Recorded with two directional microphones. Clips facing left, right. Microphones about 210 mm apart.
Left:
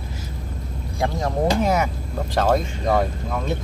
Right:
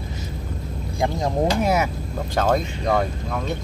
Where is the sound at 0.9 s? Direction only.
15° right (ahead or behind).